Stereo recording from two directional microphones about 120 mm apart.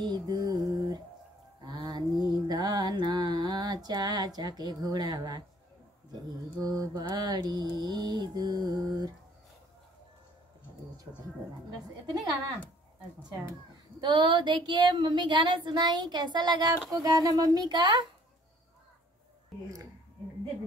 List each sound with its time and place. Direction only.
0.0 s mantra: 35° right (ahead or behind)
6.6 s child singing: 30° right (ahead or behind)
14.0 s child singing: 40° right (ahead or behind)